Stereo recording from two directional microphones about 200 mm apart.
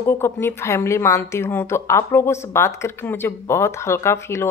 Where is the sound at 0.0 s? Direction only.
10° left (ahead or behind).